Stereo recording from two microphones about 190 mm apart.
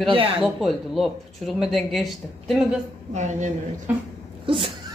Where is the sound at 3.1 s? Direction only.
40° right (ahead or behind).